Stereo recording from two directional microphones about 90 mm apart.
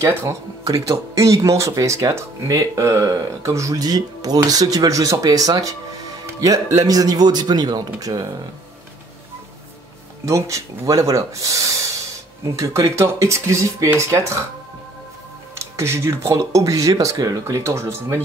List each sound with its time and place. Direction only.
0.1 s speech: 30° right (ahead or behind)
0.7 s speech: 40° right (ahead or behind)
10.2 s speech: 35° right (ahead or behind)
15.6 s speech: 30° right (ahead or behind)